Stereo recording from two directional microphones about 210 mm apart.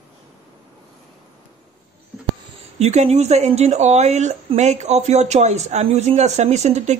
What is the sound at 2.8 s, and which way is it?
Speech, 30° right (ahead or behind).